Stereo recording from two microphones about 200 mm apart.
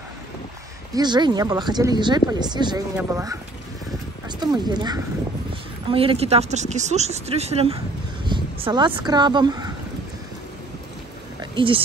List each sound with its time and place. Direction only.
0.9 s speech: 20° right (ahead or behind)
11.5 s speech: 25° right (ahead or behind)